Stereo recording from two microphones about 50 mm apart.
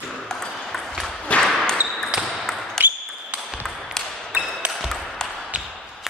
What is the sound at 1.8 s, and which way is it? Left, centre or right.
Basketball bounce, right.